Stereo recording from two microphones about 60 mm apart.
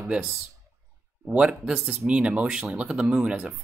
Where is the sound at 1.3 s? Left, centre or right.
Centre.